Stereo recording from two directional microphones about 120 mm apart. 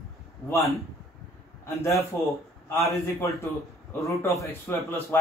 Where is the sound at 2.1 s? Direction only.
25° left (ahead or behind).